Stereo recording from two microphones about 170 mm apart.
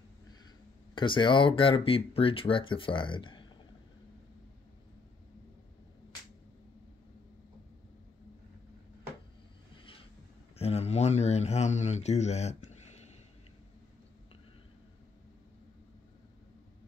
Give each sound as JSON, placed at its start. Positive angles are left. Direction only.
{"t": 0.9, "sound": "speech", "side_deg": 30}
{"t": 10.6, "sound": "speech", "side_deg": 40}